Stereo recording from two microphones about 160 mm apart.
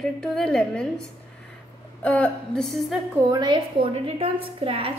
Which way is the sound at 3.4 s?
30° right (ahead or behind).